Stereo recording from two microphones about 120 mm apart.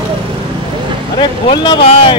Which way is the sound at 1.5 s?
40° left (ahead or behind).